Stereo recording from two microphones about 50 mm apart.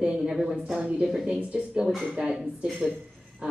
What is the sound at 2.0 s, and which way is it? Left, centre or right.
Speech, centre.